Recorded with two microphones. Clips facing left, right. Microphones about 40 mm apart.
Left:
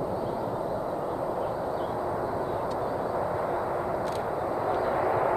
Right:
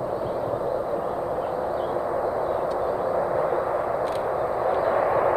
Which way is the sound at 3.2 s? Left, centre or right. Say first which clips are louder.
Right 5 dB; centre.